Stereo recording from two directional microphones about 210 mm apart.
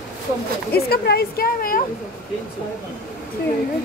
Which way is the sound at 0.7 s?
50° left (ahead or behind).